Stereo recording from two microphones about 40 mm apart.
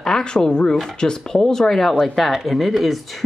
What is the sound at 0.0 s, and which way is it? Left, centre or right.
Speech, centre.